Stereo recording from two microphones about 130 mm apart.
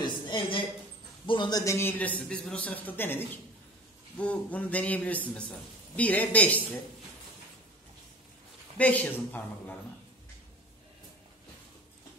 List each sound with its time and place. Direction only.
0.0 s a sound: 40° left (ahead or behind)
1.2 s a man's voice: 40° left (ahead or behind)
1.6 s speech: 20° left (ahead or behind)
8.7 s speech: 10° left (ahead or behind)